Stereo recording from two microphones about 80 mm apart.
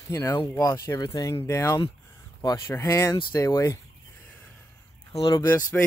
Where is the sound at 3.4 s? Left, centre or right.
Left.